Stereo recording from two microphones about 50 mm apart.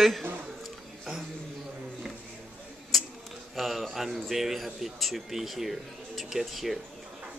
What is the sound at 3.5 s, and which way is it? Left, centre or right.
A man's voice, centre.